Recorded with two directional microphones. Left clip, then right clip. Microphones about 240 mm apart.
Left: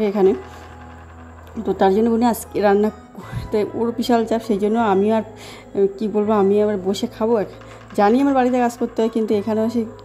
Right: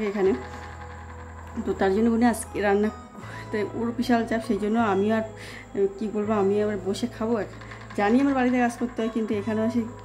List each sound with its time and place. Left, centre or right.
0.0 s a woman's voice: left
1.7 s a woman's voice: centre